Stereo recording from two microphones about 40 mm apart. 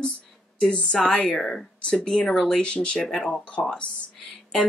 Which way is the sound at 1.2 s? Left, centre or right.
Left.